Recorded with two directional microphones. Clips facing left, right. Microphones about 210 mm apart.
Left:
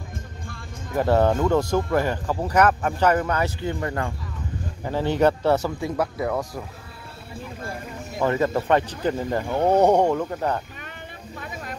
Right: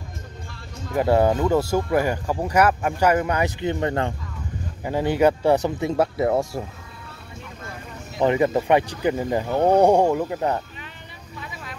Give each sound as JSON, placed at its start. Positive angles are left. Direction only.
{"t": 0.9, "sound": "speech", "side_deg": -10}
{"t": 4.8, "sound": "speech", "side_deg": -10}
{"t": 8.2, "sound": "speech", "side_deg": -15}
{"t": 11.3, "sound": "speech", "side_deg": 50}